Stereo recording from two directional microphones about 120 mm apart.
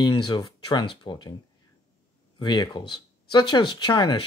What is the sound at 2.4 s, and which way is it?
Speech, 35° left (ahead or behind).